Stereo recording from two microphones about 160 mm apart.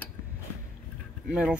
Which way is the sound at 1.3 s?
5° right (ahead or behind).